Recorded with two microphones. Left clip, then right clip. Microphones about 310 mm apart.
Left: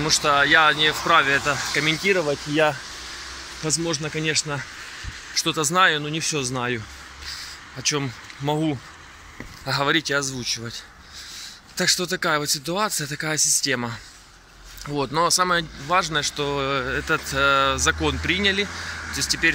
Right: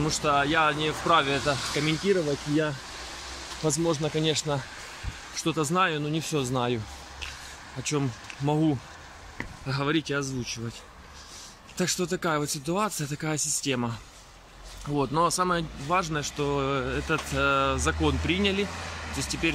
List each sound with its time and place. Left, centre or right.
0.0 s speech: centre
3.6 s speech: centre
7.8 s speech: centre